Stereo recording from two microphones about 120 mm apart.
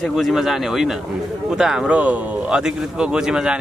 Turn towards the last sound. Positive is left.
turn(degrees=-5)  # may be behind; listen again after turning